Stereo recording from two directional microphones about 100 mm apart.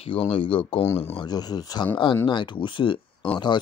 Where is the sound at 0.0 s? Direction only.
70° left (ahead or behind).